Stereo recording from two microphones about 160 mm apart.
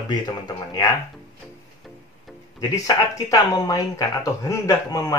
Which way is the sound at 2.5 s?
20° left (ahead or behind).